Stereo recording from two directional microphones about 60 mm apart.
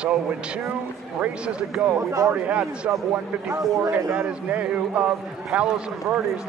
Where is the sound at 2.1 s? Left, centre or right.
Right.